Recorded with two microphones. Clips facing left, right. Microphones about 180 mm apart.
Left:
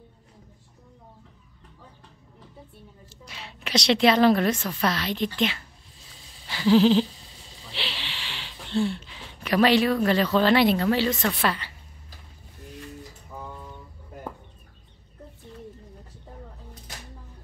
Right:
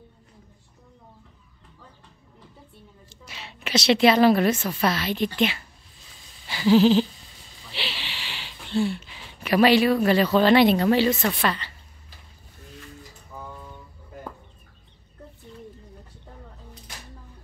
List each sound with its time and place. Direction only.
3.1 s a woman's voice: centre (ahead or behind)
6.5 s a sound: 5° right (ahead or behind)
11.4 s a woman's voice: 5° left (ahead or behind)